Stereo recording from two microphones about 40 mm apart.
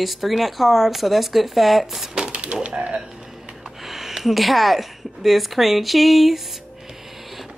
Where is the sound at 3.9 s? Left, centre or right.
Centre.